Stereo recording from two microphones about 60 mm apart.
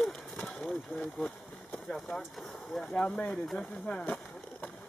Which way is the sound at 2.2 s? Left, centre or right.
Centre.